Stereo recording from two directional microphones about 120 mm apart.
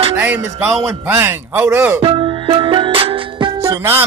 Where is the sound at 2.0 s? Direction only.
45° right (ahead or behind).